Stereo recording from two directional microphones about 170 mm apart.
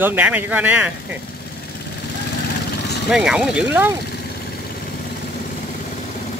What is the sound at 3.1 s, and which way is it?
Speech, 5° right (ahead or behind).